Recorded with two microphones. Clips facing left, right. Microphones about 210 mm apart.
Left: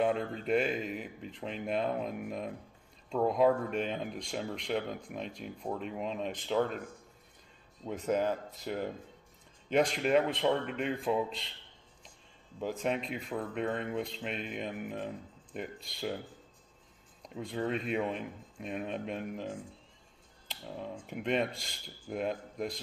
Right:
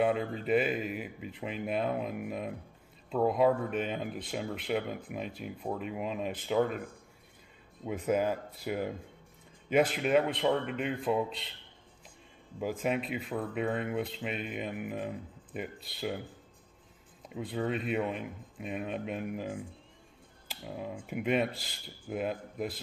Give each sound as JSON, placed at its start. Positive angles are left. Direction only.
{"t": 0.0, "sound": "speech", "side_deg": -5}
{"t": 7.8, "sound": "speech", "side_deg": -10}
{"t": 12.5, "sound": "speech", "side_deg": -10}
{"t": 17.2, "sound": "speech", "side_deg": -5}